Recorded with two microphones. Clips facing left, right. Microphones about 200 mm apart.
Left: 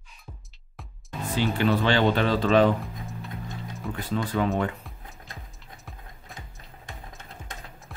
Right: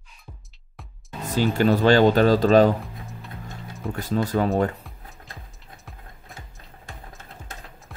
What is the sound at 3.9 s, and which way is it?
Speech, 40° right (ahead or behind).